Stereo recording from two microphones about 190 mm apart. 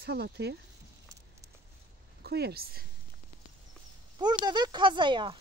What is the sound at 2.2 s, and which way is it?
Speech, 60° right (ahead or behind).